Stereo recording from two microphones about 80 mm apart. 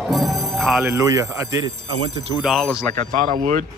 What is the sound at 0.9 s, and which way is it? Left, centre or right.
Speech, right.